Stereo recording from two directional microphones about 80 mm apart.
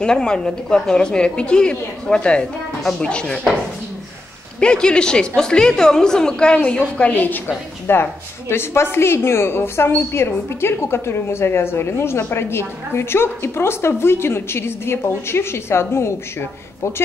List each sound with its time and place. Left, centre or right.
0.0 s a woman's voice: centre
4.6 s a woman's voice: centre; by 16.4 s left